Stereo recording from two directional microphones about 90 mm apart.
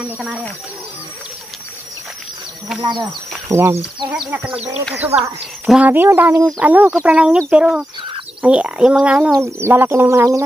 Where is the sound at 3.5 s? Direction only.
30° right (ahead or behind).